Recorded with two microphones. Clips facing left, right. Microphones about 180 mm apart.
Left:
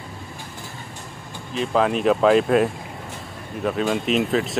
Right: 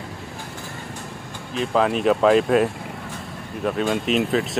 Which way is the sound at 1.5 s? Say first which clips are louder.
Even; centre (ahead or behind).